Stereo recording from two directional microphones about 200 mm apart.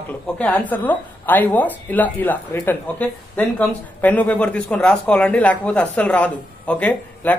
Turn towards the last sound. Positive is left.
turn(degrees=5)  # may be behind; listen again after turning